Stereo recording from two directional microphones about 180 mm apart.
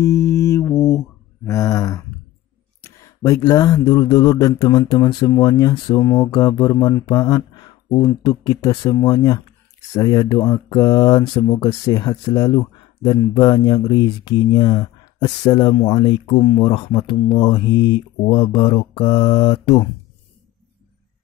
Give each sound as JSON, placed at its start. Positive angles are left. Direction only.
{"t": 0.0, "sound": "mantra", "side_deg": 15}
{"t": 2.8, "sound": "speech", "side_deg": 15}